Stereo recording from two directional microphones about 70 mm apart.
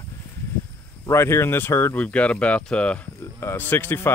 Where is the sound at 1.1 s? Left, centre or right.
Left.